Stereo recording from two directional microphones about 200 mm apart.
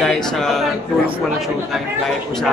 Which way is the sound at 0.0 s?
5° left (ahead or behind).